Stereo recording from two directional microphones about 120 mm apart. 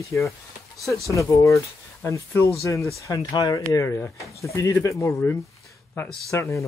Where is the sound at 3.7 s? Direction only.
20° left (ahead or behind).